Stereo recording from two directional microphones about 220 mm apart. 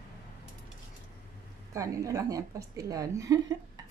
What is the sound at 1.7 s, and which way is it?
A woman's voice, 15° right (ahead or behind).